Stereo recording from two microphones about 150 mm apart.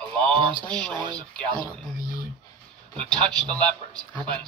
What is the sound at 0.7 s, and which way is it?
Speech, 5° left (ahead or behind).